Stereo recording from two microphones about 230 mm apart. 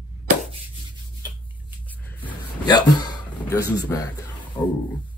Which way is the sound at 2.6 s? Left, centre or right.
Centre.